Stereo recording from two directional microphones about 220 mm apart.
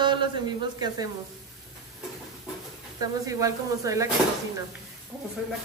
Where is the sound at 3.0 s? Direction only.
15° right (ahead or behind).